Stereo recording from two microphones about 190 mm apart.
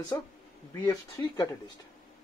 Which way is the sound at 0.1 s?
15° left (ahead or behind).